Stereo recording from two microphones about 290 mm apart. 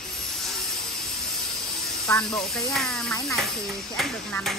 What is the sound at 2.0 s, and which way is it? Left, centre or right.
Speech, centre.